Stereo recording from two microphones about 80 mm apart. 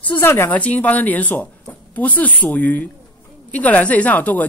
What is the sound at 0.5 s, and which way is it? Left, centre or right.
A woman's voice, centre.